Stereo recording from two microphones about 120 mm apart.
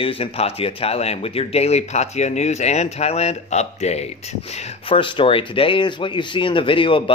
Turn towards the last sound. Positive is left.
turn(degrees=45)  # may be behind; listen again after turning